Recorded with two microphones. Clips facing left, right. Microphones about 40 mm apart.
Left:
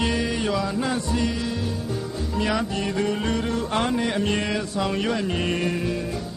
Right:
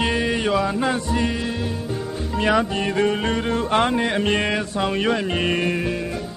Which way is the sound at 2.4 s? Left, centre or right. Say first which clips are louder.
Right 5 dB; right.